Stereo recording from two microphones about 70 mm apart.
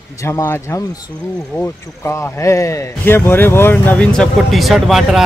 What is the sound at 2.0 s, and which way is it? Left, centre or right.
Speech, left.